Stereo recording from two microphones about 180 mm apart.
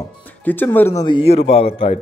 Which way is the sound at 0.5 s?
10° left (ahead or behind).